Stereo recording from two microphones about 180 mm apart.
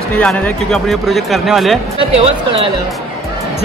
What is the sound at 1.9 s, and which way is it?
Speech, 30° right (ahead or behind).